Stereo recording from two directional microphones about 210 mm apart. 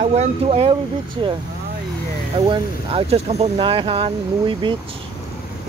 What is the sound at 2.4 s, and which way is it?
Speech, 30° right (ahead or behind).